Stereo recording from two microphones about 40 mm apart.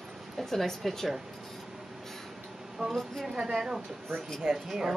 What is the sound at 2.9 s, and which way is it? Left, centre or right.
Speech, centre.